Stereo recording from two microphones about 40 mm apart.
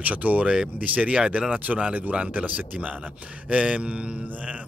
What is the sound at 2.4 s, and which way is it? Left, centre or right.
Speech, right.